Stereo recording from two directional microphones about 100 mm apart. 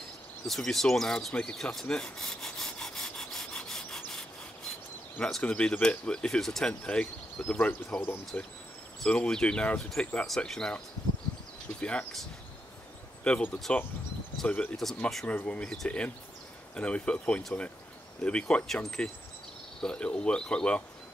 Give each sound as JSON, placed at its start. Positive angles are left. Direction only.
{"t": 0.5, "sound": "rub", "side_deg": 5}
{"t": 5.2, "sound": "speech", "side_deg": 10}
{"t": 11.8, "sound": "speech", "side_deg": 10}
{"t": 13.2, "sound": "speech", "side_deg": 15}